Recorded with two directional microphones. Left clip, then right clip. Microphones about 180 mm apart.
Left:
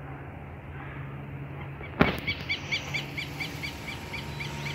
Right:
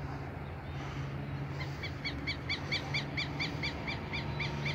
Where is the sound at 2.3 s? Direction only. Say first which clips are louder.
Left 5 dB; 55° left (ahead or behind).